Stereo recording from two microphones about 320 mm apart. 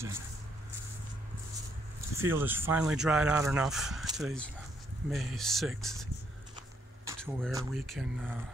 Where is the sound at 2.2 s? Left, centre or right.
Centre.